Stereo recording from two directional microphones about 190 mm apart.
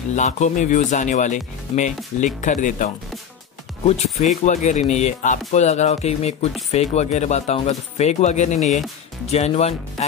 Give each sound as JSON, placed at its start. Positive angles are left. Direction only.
{"t": 0.1, "sound": "speech", "side_deg": 40}